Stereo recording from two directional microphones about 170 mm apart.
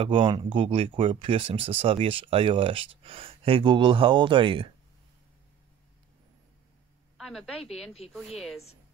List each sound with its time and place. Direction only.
0.0 s speech: 30° right (ahead or behind)
7.2 s a woman's voice: centre (ahead or behind)